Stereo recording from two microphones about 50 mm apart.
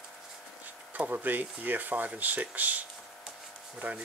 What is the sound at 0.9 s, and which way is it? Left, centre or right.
Speech, right.